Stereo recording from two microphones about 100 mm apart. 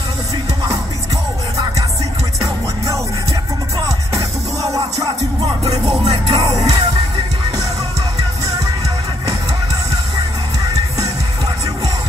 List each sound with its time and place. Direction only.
4.7 s music: 35° right (ahead or behind)
5.4 s music: 50° right (ahead or behind)